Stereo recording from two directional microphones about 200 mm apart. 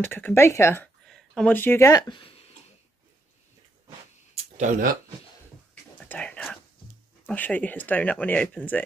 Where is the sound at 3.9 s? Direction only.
35° right (ahead or behind).